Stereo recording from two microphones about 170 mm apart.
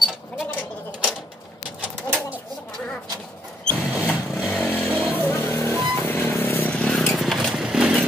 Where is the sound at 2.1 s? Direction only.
10° right (ahead or behind).